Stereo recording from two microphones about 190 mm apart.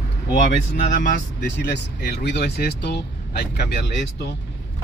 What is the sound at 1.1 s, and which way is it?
Speech, 60° left (ahead or behind).